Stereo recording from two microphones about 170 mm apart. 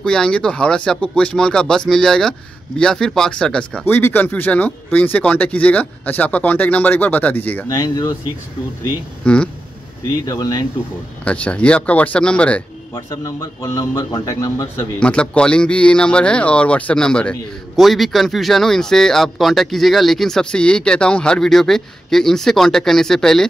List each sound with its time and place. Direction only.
0.0 s speech: 5° left (ahead or behind)
9.2 s speech: 5° left (ahead or behind)
10.2 s a man's voice: 20° left (ahead or behind)
11.2 s speech: 5° left (ahead or behind)
12.9 s a man's voice: 20° left (ahead or behind)
15.0 s speech: 5° left (ahead or behind)